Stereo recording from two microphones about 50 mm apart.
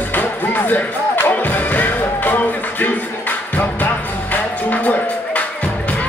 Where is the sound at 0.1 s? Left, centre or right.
Left.